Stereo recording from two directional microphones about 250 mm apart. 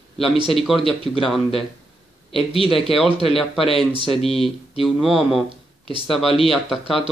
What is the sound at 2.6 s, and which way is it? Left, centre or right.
A man's voice, centre.